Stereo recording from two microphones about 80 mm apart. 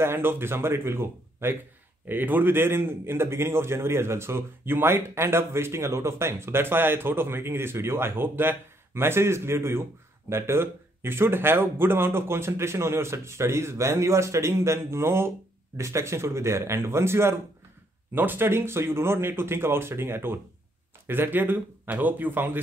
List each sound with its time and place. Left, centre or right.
0.0 s a man's voice: right